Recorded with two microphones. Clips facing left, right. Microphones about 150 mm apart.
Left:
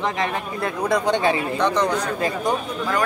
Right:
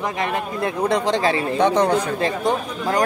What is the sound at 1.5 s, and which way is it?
Speech, 50° right (ahead or behind).